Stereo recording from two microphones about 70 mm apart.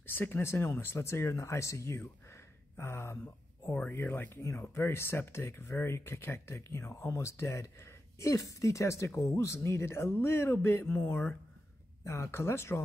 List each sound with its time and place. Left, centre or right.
0.0 s speech: left